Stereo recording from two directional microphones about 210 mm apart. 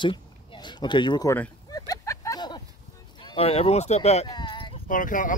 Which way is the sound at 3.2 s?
25° left (ahead or behind).